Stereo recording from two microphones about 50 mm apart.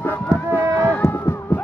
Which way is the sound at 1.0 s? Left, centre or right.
Left.